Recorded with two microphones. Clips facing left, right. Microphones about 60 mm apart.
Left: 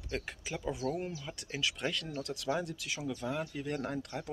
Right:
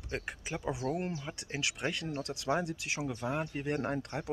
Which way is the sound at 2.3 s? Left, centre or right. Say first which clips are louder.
Right 2 dB; right.